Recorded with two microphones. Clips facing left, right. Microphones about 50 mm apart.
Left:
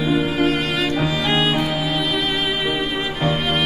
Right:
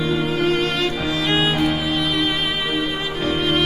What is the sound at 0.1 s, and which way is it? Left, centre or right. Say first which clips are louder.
Music: left 3 dB; centre.